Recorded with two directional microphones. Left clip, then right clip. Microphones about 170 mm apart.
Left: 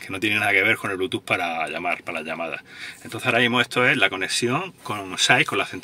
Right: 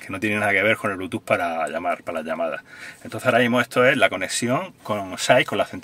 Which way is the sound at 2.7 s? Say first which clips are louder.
Even; 65° right (ahead or behind).